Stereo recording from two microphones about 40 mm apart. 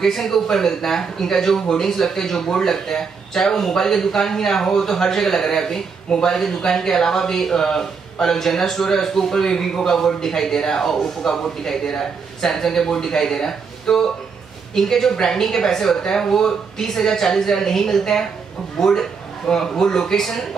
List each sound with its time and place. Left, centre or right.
0.0 s speech: centre